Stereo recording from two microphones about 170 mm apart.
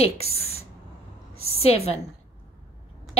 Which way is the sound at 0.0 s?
35° left (ahead or behind).